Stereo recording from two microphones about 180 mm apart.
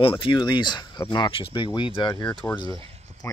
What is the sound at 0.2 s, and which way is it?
Speech, 25° left (ahead or behind).